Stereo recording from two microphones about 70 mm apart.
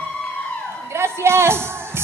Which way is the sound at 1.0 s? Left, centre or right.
Right.